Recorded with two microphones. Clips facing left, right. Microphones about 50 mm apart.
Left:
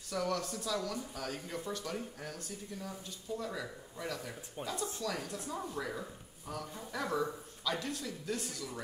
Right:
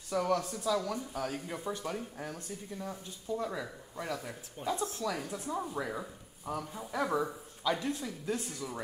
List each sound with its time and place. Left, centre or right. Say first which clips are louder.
0.1 s speech: right 4 dB; centre
4.6 s speech: right 6 dB; centre
5.0 s speech: right 3 dB; centre